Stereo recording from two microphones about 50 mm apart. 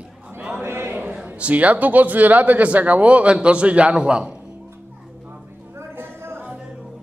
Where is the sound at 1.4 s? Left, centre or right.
Right.